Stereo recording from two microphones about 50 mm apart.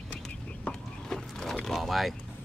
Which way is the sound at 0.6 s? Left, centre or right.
Centre.